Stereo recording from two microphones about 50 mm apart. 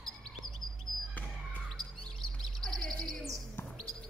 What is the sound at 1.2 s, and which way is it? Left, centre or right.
Basketball bounce, left.